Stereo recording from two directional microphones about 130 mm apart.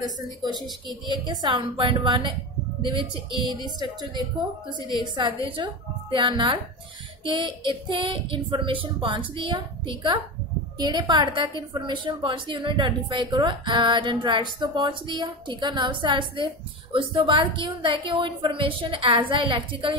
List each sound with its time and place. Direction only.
0.0 s a woman's voice: 30° right (ahead or behind)
5.0 s a woman's voice: 40° right (ahead or behind)